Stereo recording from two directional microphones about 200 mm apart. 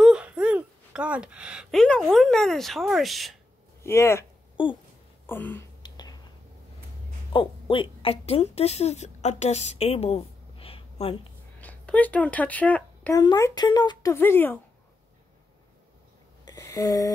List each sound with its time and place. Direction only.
0.0 s speech: 5° right (ahead or behind)
3.8 s speech: 15° left (ahead or behind)
4.6 s a sound: 25° left (ahead or behind)
5.2 s speech: 10° left (ahead or behind)
5.8 s a sound: 20° left (ahead or behind)
7.3 s a woman's voice: 25° left (ahead or behind)
11.6 s speech: 5° left (ahead or behind)
13.2 s speech: 20° left (ahead or behind)
16.4 s a sound: 15° left (ahead or behind)